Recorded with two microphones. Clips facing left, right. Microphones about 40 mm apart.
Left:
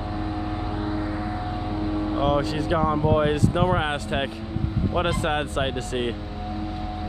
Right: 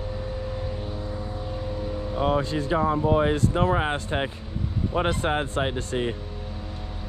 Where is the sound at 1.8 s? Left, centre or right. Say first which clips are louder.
Left 5 dB; left.